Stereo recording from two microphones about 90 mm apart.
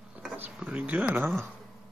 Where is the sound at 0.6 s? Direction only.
15° right (ahead or behind).